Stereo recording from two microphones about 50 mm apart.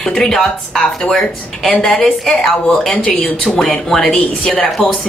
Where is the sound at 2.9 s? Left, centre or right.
Left.